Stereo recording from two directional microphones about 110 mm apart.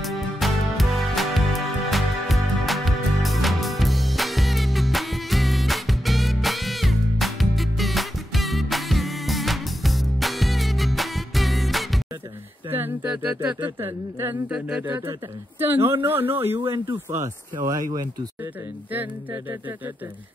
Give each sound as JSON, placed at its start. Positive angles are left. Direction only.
{"t": 0.0, "sound": "music", "side_deg": 0}
{"t": 12.7, "sound": "a sound", "side_deg": -20}
{"t": 13.7, "sound": "speech", "side_deg": -20}
{"t": 14.5, "sound": "speech", "side_deg": -10}
{"t": 17.6, "sound": "speech", "side_deg": -35}